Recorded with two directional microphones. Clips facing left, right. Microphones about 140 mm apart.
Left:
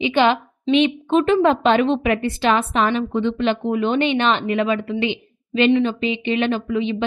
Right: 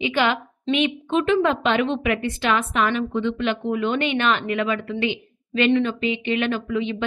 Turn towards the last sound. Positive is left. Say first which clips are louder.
# left 3 dB
turn(degrees=25)  # may be behind; listen again after turning